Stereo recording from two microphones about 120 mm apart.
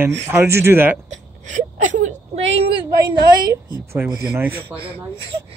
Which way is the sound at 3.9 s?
20° right (ahead or behind).